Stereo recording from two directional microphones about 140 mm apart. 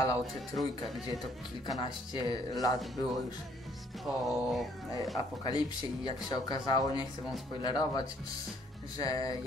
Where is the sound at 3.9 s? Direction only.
Centre (ahead or behind).